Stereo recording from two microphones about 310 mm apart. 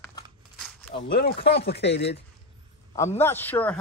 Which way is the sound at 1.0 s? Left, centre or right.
Left.